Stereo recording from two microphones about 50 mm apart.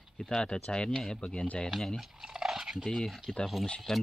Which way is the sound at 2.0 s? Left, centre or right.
Centre.